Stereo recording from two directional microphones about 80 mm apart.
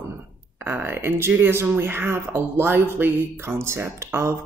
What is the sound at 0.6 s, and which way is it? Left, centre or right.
Speech, right.